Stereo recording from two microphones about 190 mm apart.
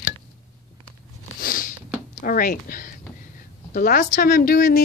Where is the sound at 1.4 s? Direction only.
50° left (ahead or behind).